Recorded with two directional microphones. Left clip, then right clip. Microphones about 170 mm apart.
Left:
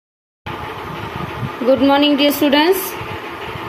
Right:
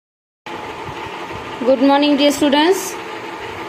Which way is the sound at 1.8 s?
10° left (ahead or behind).